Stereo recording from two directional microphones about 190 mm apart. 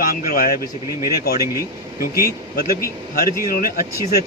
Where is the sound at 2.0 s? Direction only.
50° left (ahead or behind).